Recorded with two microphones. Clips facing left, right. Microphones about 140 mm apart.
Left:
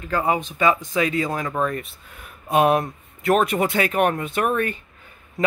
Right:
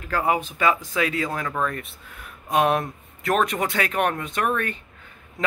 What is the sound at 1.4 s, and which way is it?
Speech, 15° left (ahead or behind).